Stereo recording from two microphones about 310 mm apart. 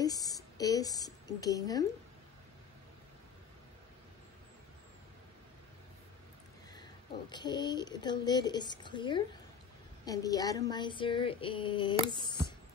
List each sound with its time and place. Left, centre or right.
0.0 s a sound: centre
6.7 s speech: centre
10.0 s female singing: centre